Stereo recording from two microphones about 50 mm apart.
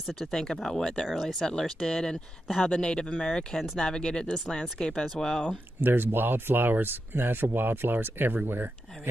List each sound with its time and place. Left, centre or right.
0.2 s speech: centre
5.8 s speech: right